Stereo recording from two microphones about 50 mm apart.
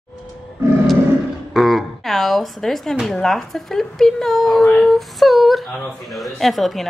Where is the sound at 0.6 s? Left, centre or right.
Right.